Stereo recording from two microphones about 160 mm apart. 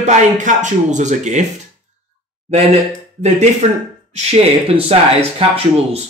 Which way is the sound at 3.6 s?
45° right (ahead or behind).